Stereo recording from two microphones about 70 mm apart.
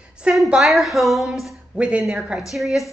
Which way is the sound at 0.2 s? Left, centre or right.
Centre.